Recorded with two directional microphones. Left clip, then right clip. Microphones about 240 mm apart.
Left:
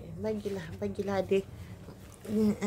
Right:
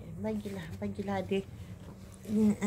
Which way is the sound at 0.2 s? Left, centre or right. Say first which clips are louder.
Left 4 dB; left.